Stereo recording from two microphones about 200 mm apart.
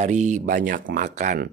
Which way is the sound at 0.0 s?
40° right (ahead or behind).